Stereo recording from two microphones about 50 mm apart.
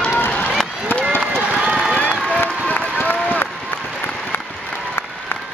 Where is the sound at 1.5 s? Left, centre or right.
Centre.